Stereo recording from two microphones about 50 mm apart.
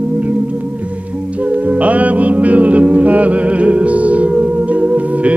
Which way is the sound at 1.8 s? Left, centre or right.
Right.